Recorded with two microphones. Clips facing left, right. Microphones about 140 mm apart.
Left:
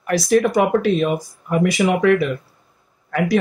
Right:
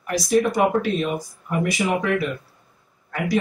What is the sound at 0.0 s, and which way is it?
Speech, 65° left (ahead or behind).